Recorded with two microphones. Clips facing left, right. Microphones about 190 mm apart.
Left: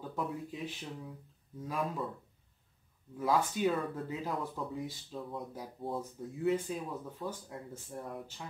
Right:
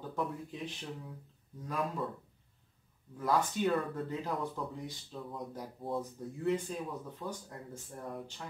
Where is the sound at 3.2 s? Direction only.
5° left (ahead or behind).